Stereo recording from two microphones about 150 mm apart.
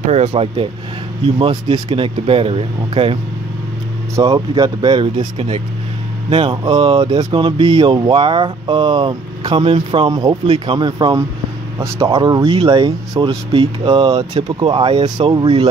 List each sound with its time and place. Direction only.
0.1 s speech: 40° right (ahead or behind)
4.1 s speech: 25° right (ahead or behind)